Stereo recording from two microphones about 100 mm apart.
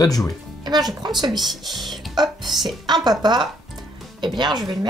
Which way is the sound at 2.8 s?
45° right (ahead or behind).